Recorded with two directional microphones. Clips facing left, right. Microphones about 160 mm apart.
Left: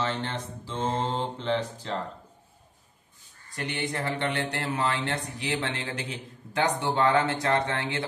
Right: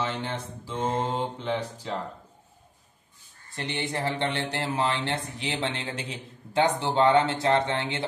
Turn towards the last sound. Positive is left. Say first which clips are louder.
# right 2 dB
turn(degrees=-25)  # may be behind; listen again after turning